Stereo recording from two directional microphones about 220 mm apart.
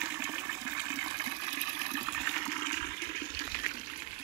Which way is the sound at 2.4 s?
35° left (ahead or behind).